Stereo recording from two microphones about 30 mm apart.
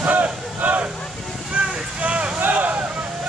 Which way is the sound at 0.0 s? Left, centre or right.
Right.